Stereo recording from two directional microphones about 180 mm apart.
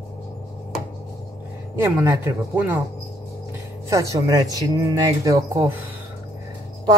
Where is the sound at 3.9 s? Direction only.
15° right (ahead or behind).